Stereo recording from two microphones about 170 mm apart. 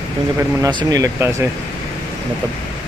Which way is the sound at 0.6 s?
25° right (ahead or behind).